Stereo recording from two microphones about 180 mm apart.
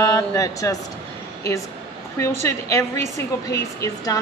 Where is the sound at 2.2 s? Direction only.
15° left (ahead or behind).